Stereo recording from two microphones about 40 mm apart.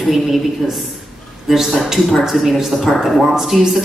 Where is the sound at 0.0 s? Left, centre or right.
Centre.